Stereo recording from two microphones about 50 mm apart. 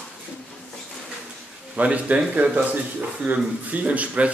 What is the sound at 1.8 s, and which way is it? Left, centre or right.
A man's voice, right.